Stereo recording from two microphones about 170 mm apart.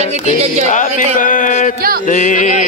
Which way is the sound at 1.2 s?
50° left (ahead or behind).